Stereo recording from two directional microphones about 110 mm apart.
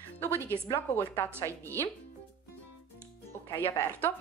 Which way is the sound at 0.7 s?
20° left (ahead or behind).